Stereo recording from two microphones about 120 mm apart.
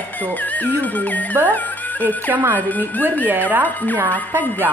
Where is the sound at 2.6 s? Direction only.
15° left (ahead or behind).